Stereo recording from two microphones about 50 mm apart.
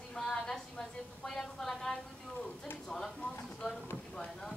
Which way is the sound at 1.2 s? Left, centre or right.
Centre.